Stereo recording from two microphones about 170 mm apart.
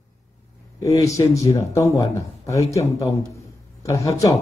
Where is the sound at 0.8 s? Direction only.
20° left (ahead or behind).